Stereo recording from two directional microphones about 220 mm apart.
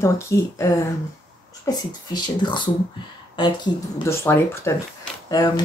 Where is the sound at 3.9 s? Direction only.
10° left (ahead or behind).